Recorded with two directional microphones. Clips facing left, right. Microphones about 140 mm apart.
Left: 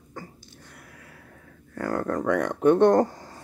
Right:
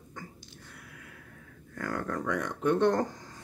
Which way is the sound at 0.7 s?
45° left (ahead or behind).